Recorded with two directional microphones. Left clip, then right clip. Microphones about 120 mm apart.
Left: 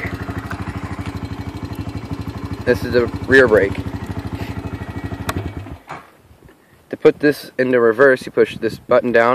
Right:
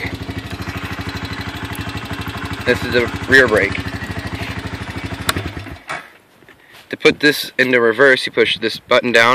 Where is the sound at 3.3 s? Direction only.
5° right (ahead or behind).